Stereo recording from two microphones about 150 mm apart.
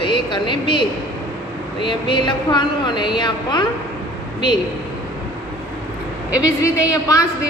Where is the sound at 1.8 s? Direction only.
30° left (ahead or behind).